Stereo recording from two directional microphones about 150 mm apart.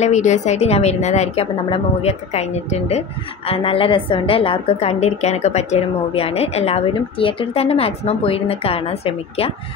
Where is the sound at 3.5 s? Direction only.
35° left (ahead or behind).